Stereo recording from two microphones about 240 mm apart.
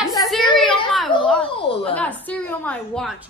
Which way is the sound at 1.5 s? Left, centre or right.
Left.